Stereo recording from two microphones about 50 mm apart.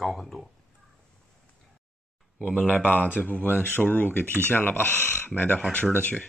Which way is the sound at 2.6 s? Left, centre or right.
Left.